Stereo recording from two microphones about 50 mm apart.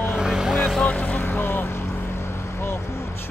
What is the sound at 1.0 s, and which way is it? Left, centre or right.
Vehicle, left.